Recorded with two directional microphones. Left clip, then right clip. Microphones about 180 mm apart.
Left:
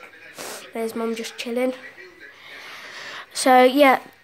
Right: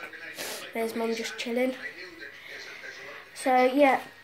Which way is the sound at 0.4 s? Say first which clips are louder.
Left 3 dB; 35° left (ahead or behind).